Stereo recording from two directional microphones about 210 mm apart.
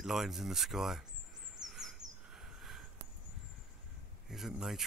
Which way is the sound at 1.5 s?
Centre (ahead or behind).